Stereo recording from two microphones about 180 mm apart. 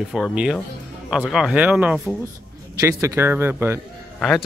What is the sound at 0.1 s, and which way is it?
Speech, 5° right (ahead or behind).